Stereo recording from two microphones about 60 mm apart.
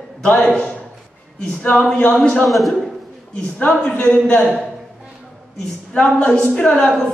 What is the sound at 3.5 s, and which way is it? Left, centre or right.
Speech, centre.